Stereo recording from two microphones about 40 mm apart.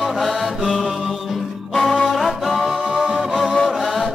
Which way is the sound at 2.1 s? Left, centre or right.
Centre.